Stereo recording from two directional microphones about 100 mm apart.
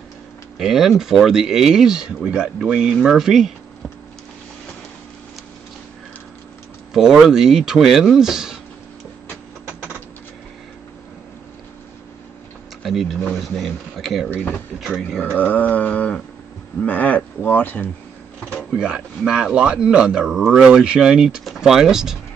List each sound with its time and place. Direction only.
0.6 s speech: 5° right (ahead or behind)
6.9 s speech: 5° right (ahead or behind)
12.8 s speech: centre (ahead or behind)
14.3 s speech: 20° left (ahead or behind)
15.1 s a sound: 15° left (ahead or behind)
18.8 s speech: 10° right (ahead or behind)